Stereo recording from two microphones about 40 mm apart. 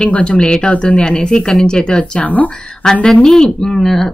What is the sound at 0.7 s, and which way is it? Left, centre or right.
Speech, left.